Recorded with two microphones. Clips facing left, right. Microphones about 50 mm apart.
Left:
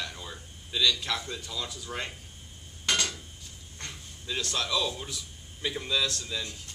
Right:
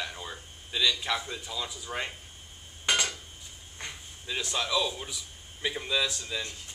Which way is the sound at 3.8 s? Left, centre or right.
Centre.